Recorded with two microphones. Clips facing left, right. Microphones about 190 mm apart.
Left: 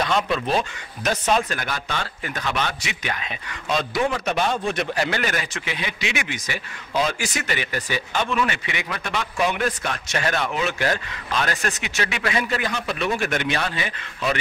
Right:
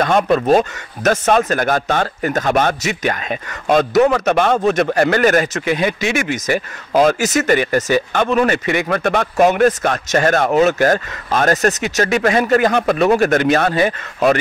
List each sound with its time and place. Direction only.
0.0 s speech: 50° right (ahead or behind); by 4.6 s 65° right (ahead or behind)
4.6 s speech: 50° right (ahead or behind)